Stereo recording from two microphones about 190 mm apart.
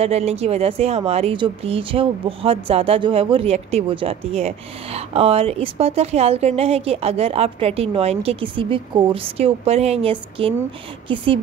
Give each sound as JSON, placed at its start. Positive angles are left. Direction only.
{"t": 0.0, "sound": "speech", "side_deg": -35}